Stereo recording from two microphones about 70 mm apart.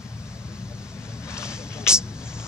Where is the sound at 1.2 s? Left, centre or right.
Left.